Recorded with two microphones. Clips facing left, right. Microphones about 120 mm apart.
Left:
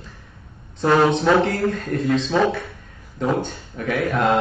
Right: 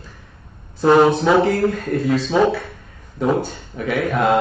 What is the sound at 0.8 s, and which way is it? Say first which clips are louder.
Speech: right 3 dB; 10° right (ahead or behind).